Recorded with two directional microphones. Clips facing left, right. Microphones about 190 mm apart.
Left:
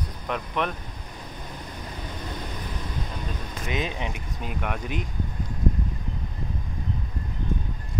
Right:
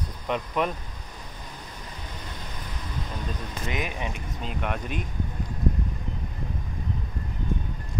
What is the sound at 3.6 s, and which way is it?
Speech, 20° left (ahead or behind).